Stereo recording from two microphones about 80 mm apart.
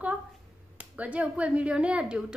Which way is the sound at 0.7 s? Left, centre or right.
Centre.